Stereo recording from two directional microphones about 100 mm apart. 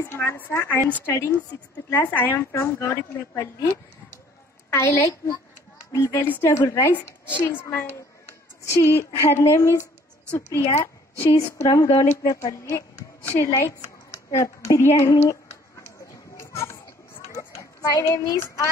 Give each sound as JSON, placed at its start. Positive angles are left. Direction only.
{"t": 0.0, "sound": "a woman's voice", "side_deg": 25}
{"t": 8.6, "sound": "a woman's voice", "side_deg": 30}
{"t": 16.3, "sound": "a sound", "side_deg": 30}
{"t": 17.8, "sound": "a woman's voice", "side_deg": 35}